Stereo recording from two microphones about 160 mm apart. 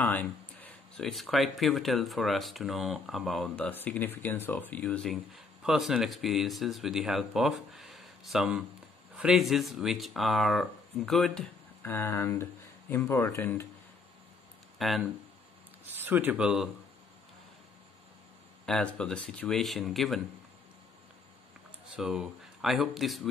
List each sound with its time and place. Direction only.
0.0 s speech: 10° left (ahead or behind)
14.8 s speech: centre (ahead or behind)
15.9 s speech: 10° right (ahead or behind)
18.7 s speech: 5° left (ahead or behind)
21.9 s speech: 5° right (ahead or behind)